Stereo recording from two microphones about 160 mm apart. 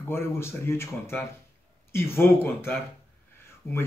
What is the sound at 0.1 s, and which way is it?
Speech, 15° left (ahead or behind).